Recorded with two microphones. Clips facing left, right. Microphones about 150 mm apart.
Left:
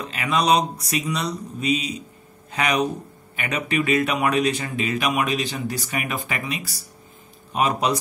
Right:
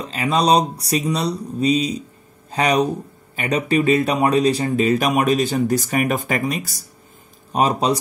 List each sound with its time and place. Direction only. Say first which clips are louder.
0.0 s speech: right 4 dB; 30° right (ahead or behind)
7.5 s speech: right 3 dB; 35° right (ahead or behind)